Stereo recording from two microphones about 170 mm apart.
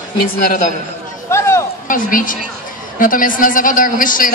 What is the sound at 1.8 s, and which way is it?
A woman's voice, 55° left (ahead or behind).